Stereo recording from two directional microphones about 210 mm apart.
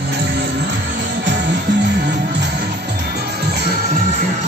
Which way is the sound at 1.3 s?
55° right (ahead or behind).